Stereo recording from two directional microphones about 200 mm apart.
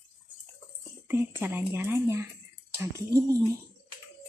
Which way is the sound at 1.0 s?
10° right (ahead or behind).